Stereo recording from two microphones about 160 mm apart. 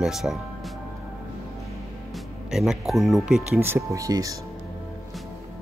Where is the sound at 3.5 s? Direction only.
15° right (ahead or behind).